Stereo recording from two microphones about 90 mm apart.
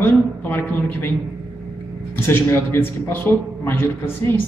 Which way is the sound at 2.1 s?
25° left (ahead or behind).